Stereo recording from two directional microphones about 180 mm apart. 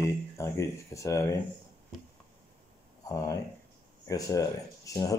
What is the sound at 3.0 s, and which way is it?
A man's voice, 20° left (ahead or behind).